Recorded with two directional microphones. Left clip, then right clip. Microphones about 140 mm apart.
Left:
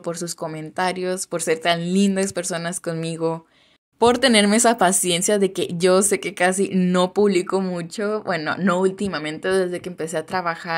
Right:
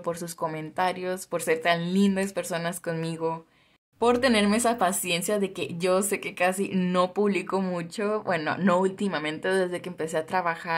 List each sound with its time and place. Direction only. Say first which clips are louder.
0.0 s a woman's voice: left 2 dB; 20° left (ahead or behind)